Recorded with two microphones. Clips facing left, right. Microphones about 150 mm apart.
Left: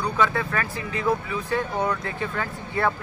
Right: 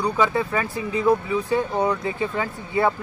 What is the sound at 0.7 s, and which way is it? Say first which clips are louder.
Speech: right 6 dB; 5° right (ahead or behind).